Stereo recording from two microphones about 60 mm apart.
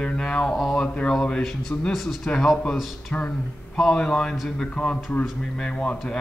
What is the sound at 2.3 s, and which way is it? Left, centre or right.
Speech, centre.